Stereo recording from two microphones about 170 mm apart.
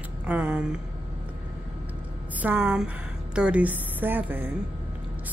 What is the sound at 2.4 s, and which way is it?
A woman's voice, 10° right (ahead or behind).